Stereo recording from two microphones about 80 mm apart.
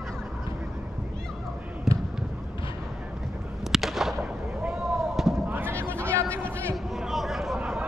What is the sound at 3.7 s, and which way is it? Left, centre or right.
Artillery fire, centre.